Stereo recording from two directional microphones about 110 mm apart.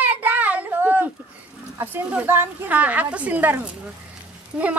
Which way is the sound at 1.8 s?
20° right (ahead or behind).